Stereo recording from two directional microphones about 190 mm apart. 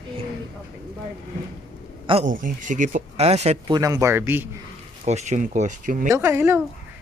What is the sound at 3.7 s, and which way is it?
Speech, 20° right (ahead or behind).